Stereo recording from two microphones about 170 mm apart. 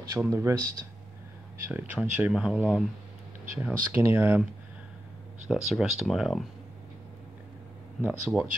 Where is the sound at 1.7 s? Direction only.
10° right (ahead or behind).